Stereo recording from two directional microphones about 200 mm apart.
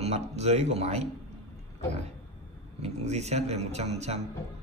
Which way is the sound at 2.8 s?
35° right (ahead or behind).